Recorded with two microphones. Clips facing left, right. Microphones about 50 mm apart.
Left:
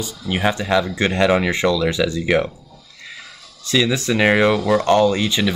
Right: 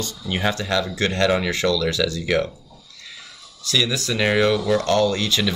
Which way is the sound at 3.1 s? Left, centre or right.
Left.